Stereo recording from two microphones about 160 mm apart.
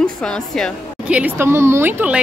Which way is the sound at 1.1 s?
10° right (ahead or behind).